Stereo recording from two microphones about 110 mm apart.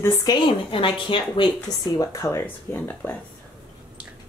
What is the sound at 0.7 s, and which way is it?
A woman's voice, 50° left (ahead or behind).